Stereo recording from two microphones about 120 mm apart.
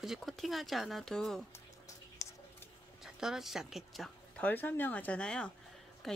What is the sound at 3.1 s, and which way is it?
Speech, 5° right (ahead or behind).